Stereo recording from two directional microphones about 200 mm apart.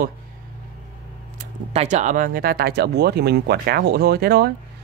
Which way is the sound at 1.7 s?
35° right (ahead or behind).